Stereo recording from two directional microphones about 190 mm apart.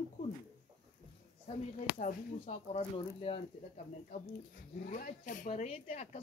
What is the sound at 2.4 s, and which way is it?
Speech, 30° left (ahead or behind).